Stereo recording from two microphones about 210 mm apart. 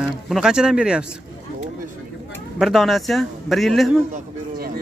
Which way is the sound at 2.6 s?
Centre (ahead or behind).